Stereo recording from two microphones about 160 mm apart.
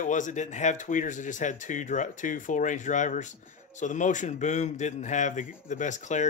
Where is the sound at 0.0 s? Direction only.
50° left (ahead or behind).